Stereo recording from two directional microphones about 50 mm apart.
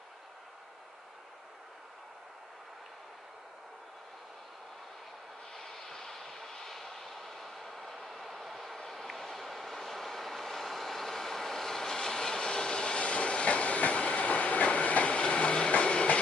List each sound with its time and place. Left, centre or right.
5.5 s vehicle: centre